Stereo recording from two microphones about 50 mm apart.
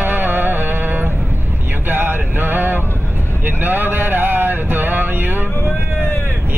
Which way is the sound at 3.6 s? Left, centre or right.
Right.